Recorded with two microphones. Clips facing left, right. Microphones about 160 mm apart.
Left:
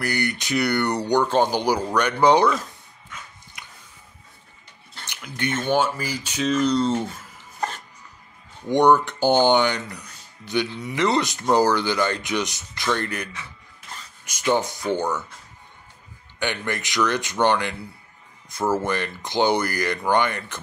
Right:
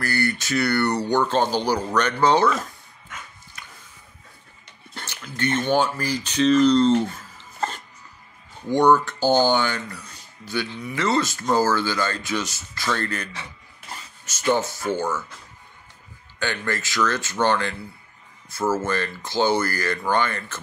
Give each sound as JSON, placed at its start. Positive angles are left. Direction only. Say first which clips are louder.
{"t": 0.0, "sound": "speech", "louder": "right 1 dB", "side_deg": 15}
{"t": 3.6, "sound": "a sound", "louder": "right 1 dB", "side_deg": 15}
{"t": 5.0, "sound": "speech", "louder": "right 2 dB", "side_deg": 15}
{"t": 8.6, "sound": "speech", "louder": "left 1 dB", "side_deg": 20}
{"t": 16.3, "sound": "speech", "louder": "even", "side_deg": 15}